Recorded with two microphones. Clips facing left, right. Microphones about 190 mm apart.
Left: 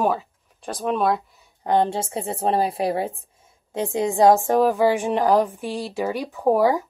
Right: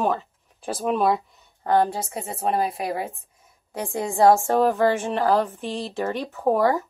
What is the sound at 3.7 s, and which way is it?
A woman's voice, 20° left (ahead or behind).